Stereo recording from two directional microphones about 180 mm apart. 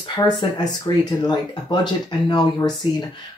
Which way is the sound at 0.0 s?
25° left (ahead or behind).